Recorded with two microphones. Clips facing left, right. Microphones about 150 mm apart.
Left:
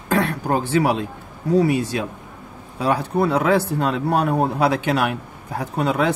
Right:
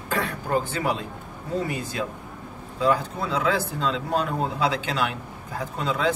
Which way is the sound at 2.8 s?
65° left (ahead or behind).